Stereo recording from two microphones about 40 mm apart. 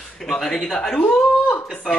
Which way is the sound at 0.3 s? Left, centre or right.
Centre.